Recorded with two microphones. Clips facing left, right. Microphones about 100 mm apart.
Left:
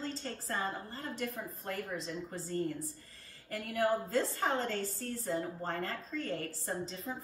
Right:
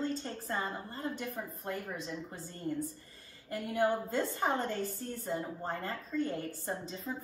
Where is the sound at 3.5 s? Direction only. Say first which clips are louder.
Right 1 dB; 25° right (ahead or behind).